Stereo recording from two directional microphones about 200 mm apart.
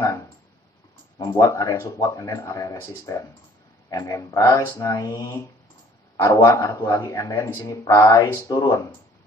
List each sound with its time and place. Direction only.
1.1 s speech: 20° left (ahead or behind)